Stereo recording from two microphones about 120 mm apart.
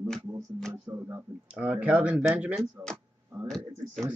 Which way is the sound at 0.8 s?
25° right (ahead or behind).